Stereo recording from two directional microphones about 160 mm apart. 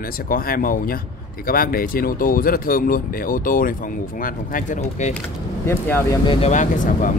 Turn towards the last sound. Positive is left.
turn(degrees=50)  # may be behind; listen again after turning